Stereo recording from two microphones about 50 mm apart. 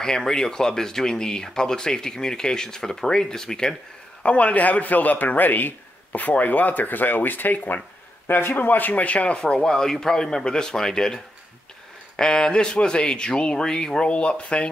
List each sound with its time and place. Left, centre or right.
0.0 s speech: centre
4.2 s a man's voice: left
12.2 s speech: centre